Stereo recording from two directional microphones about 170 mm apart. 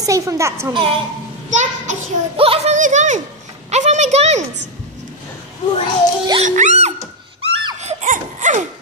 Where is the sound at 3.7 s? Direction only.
40° right (ahead or behind).